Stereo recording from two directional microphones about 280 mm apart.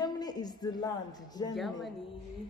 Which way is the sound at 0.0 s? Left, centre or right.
Centre.